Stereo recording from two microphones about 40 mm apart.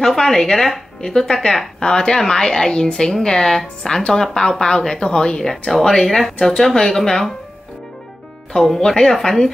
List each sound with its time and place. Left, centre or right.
0.0 s speech: centre
8.5 s speech: centre